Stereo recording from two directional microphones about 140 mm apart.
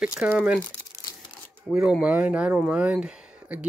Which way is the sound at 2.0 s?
10° right (ahead or behind).